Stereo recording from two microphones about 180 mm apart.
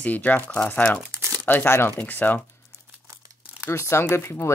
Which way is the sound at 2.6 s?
15° right (ahead or behind).